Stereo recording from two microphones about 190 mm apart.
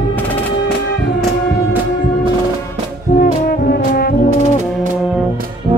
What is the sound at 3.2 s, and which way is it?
Brass instrument, 50° left (ahead or behind).